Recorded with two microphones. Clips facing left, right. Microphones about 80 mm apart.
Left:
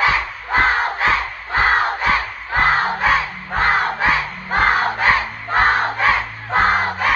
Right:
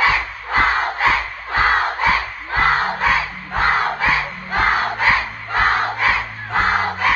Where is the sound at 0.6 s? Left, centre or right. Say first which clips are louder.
Right 1 dB; left.